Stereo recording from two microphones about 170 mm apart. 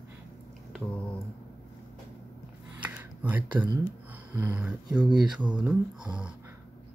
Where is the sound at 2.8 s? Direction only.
10° right (ahead or behind).